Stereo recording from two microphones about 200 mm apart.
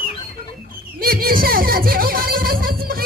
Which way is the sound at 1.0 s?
45° right (ahead or behind).